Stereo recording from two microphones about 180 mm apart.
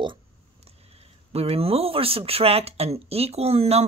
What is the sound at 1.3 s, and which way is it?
Speech, 35° right (ahead or behind).